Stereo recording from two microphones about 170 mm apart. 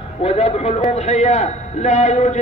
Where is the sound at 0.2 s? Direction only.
40° left (ahead or behind).